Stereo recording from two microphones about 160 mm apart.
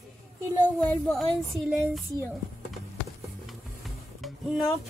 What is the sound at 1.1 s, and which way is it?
Music, centre (ahead or behind).